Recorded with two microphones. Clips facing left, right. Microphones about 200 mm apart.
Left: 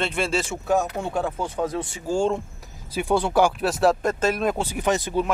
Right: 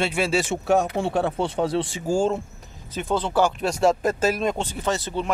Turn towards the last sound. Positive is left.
turn(degrees=10)  # may be behind; listen again after turning